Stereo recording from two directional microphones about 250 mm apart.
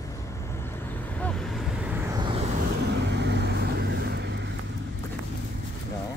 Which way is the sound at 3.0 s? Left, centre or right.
Right.